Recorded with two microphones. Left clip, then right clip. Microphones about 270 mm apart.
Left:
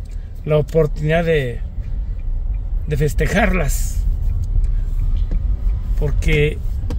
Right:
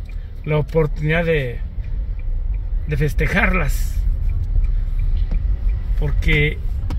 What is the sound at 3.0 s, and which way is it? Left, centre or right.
Speech, centre.